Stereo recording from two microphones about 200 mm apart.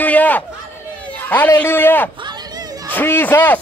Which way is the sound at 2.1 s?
20° right (ahead or behind).